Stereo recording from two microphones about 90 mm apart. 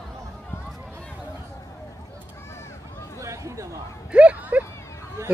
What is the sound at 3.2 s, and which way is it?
Chatter, 35° right (ahead or behind).